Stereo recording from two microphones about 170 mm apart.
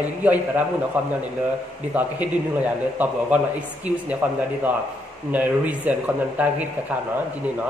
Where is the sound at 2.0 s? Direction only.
10° right (ahead or behind).